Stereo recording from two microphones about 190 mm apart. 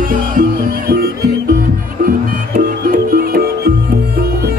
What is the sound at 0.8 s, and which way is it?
Music, 55° right (ahead or behind).